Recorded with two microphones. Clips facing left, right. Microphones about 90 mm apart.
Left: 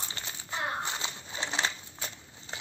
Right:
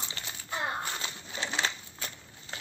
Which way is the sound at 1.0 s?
25° left (ahead or behind).